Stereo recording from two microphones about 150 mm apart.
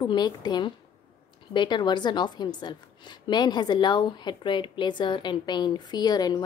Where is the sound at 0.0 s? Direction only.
30° left (ahead or behind).